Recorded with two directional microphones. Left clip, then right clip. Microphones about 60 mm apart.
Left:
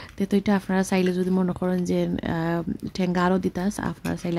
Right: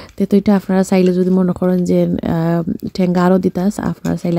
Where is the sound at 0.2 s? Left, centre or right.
Right.